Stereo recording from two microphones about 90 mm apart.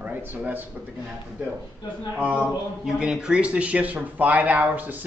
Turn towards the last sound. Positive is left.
turn(degrees=-20)  # may be behind; listen again after turning